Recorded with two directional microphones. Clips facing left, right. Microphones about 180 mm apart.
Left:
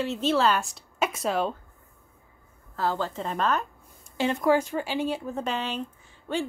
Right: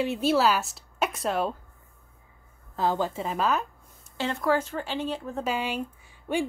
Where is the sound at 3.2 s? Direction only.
5° right (ahead or behind).